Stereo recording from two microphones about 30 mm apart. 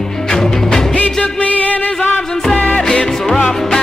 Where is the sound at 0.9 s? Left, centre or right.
Left.